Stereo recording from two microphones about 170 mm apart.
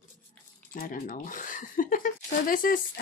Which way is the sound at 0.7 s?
55° left (ahead or behind).